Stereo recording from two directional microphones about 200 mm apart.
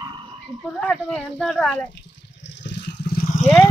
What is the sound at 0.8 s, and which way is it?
Speech, 5° left (ahead or behind).